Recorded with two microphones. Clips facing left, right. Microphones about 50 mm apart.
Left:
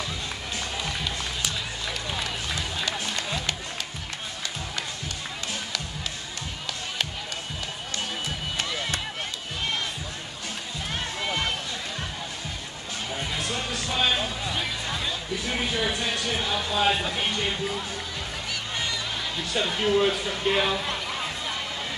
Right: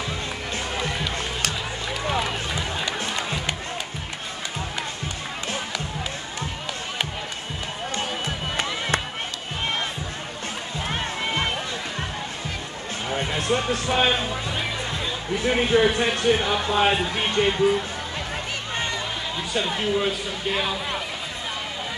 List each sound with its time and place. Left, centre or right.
2.1 s run: right
8.5 s music: right
10.9 s crowd: right
13.1 s a sound: right
14.5 s music: right
15.3 s speech: right
18.5 s music: right
19.7 s a man's voice: centre